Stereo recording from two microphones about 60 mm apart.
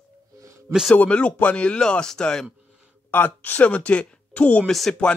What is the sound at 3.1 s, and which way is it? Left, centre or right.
A man's voice, left.